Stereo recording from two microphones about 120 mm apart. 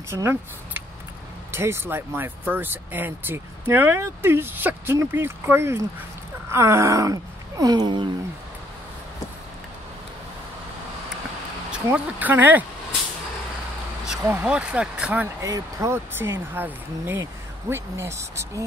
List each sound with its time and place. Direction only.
0.1 s speech: 20° right (ahead or behind); by 8.1 s 40° right (ahead or behind)
11.7 s speech: 10° right (ahead or behind)
14.0 s a sound: 5° right (ahead or behind)
14.4 s speech: 10° right (ahead or behind)
15.4 s speech: 25° right (ahead or behind)